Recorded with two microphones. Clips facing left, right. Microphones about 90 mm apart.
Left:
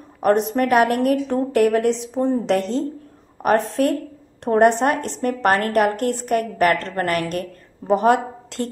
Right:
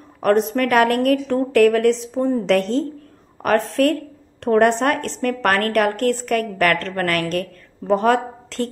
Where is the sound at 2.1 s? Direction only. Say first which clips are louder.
Right 1 dB; 25° left (ahead or behind).